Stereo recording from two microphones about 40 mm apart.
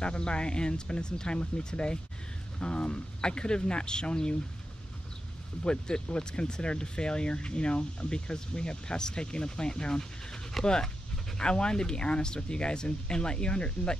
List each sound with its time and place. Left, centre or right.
0.0 s speech: left
5.6 s speech: left